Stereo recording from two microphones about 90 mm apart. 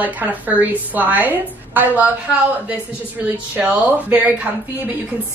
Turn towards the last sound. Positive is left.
turn(degrees=-15)  # may be behind; listen again after turning